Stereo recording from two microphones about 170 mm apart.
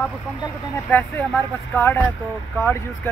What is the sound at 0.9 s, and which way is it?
Speech, 10° left (ahead or behind).